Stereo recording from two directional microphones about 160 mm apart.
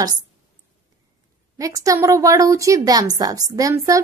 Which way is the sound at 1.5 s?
20° right (ahead or behind).